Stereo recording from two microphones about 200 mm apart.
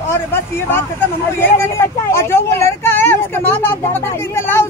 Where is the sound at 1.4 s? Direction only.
10° left (ahead or behind).